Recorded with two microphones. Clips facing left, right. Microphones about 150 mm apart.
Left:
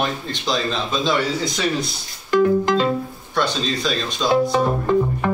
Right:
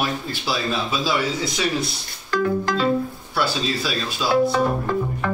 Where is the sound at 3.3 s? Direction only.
5° right (ahead or behind).